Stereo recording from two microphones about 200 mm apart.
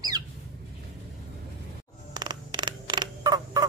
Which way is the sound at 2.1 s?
20° right (ahead or behind).